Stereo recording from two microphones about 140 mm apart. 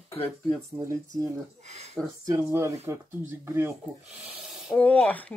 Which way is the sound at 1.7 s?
50° right (ahead or behind).